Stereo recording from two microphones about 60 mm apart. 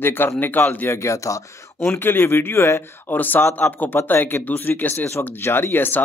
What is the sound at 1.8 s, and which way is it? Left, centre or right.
Speech, left.